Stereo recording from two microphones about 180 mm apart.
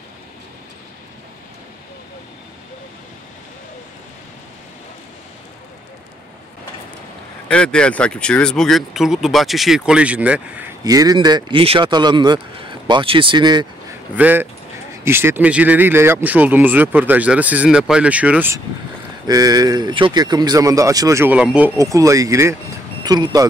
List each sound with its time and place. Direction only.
7.4 s speech: 5° left (ahead or behind)
10.8 s speech: 20° right (ahead or behind)
14.1 s speech: 10° right (ahead or behind)
19.2 s speech: 20° right (ahead or behind)